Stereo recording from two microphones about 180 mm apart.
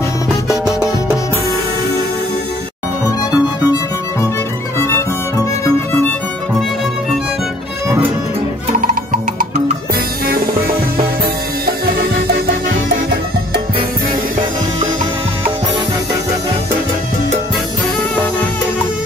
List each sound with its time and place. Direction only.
3.3 s music: 20° left (ahead or behind)
8.7 s music: 50° right (ahead or behind)